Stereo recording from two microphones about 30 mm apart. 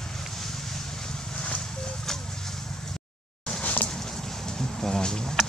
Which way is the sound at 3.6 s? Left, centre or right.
Left.